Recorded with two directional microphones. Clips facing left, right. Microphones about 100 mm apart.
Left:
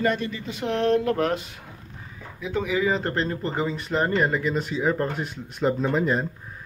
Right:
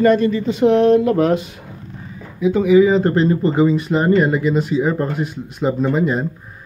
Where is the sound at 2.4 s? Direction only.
10° right (ahead or behind).